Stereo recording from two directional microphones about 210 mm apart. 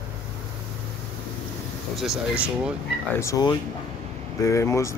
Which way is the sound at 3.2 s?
20° left (ahead or behind).